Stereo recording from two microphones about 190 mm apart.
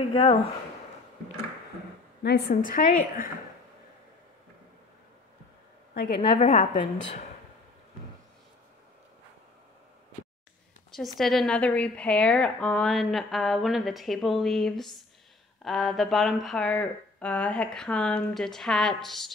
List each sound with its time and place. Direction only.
0.0 s speech: 30° left (ahead or behind)
2.2 s a woman's voice: 60° left (ahead or behind)
2.5 s a woman's voice: 45° left (ahead or behind)
6.2 s a woman's voice: 40° left (ahead or behind)
10.9 s speech: centre (ahead or behind)